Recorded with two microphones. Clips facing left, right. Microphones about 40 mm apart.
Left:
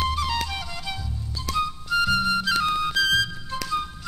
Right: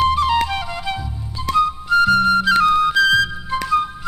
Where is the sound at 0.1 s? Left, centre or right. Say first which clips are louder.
Right 9 dB; right.